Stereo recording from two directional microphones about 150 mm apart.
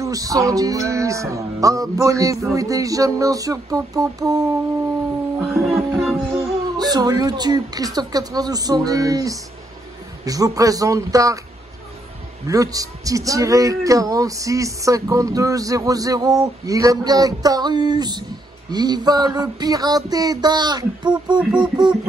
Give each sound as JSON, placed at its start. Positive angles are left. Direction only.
{"t": 0.0, "sound": "speech", "side_deg": -25}
{"t": 5.4, "sound": "music", "side_deg": 0}
{"t": 6.8, "sound": "speech", "side_deg": -25}
{"t": 12.4, "sound": "speech", "side_deg": -25}